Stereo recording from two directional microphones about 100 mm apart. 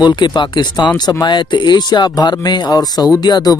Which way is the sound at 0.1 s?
50° left (ahead or behind).